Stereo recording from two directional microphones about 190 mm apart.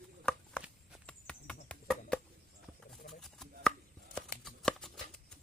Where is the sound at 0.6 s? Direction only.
Centre (ahead or behind).